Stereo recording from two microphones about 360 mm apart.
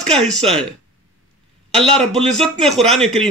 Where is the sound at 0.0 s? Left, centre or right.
Centre.